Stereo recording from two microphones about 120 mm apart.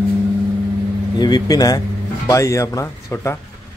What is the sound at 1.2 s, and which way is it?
Speech, 35° left (ahead or behind).